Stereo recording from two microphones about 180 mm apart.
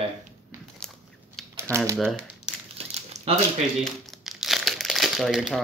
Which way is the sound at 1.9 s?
Centre (ahead or behind).